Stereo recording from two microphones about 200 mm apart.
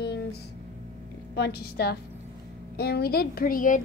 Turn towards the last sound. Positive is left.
turn(degrees=40)  # may be behind; listen again after turning